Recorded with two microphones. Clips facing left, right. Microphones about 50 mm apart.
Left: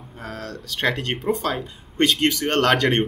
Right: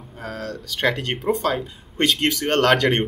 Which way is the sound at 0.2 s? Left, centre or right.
Centre.